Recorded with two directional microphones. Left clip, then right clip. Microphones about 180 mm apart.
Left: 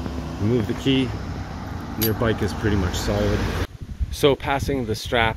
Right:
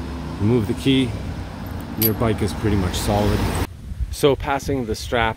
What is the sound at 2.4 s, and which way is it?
Speech, 55° right (ahead or behind).